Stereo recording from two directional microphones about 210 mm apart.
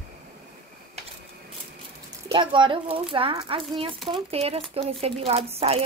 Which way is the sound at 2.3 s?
25° right (ahead or behind).